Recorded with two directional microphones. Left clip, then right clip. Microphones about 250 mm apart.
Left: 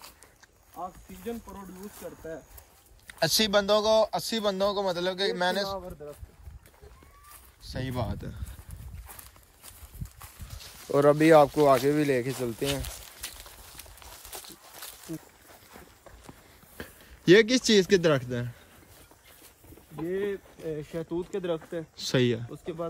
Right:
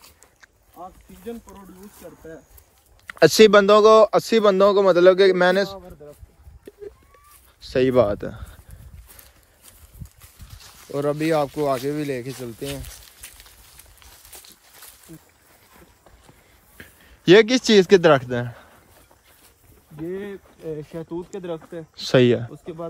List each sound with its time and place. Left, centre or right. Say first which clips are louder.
0.7 s speech: left 1 dB; centre
3.1 s speech: right 13 dB; centre
7.6 s speech: right 18 dB; centre
10.9 s speech: left 3 dB; centre
12.9 s a sound: left 2 dB; centre
17.2 s speech: right 6 dB; centre
20.1 s speech: left 1 dB; centre